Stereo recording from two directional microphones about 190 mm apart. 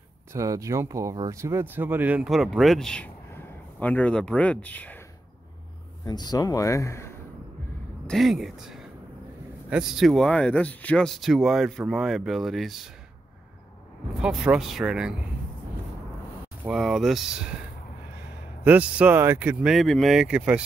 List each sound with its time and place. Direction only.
0.3 s speech: 15° right (ahead or behind); by 5.0 s 10° left (ahead or behind)
6.0 s speech: 20° left (ahead or behind)
8.1 s speech: centre (ahead or behind)
14.2 s speech: 5° right (ahead or behind)
16.6 s speech: 5° right (ahead or behind)